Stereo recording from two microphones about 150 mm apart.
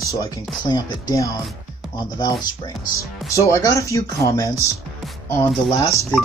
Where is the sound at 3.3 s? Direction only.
20° left (ahead or behind).